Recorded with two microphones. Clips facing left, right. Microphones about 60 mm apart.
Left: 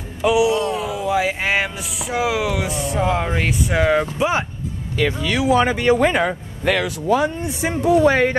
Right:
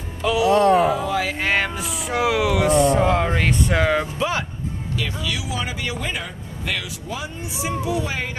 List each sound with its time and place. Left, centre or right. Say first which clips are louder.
0.2 s speech: left 4 dB; centre
0.5 s speech: right 5 dB; right
1.0 s speech: left 3 dB; centre
4.2 s speech: left 4 dB; left
5.2 s speech: left 10 dB; left